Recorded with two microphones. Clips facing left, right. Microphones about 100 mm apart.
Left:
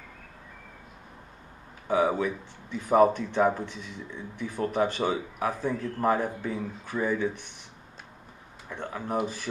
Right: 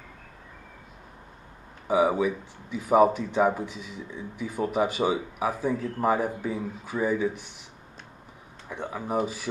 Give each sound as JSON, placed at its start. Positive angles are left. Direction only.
{"t": 1.9, "sound": "speech", "side_deg": -10}
{"t": 8.6, "sound": "speech", "side_deg": -5}